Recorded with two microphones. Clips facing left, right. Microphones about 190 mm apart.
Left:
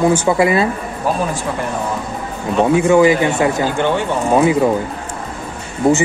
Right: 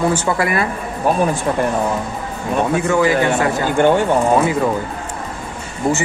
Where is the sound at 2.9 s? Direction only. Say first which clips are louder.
Left 3 dB; 20° left (ahead or behind).